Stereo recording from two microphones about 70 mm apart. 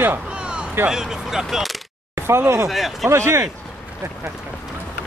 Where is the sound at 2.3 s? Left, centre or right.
Right.